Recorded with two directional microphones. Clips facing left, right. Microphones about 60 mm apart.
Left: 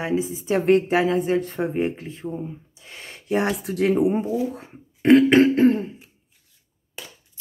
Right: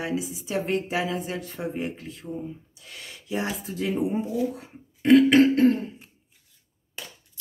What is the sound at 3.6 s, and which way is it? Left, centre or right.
Speech, left.